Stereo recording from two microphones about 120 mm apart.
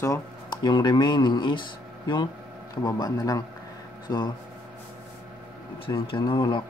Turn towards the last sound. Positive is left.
turn(degrees=40)  # may be behind; listen again after turning